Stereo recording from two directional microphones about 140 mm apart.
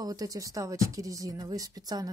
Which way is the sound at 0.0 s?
25° right (ahead or behind).